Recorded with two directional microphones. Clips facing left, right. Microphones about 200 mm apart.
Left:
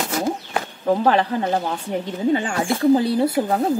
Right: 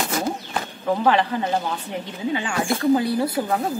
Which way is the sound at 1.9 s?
45° left (ahead or behind).